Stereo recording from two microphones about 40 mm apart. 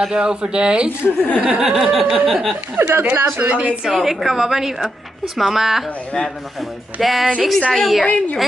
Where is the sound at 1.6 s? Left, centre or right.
Centre.